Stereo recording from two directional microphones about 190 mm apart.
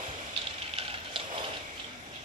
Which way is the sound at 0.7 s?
30° right (ahead or behind).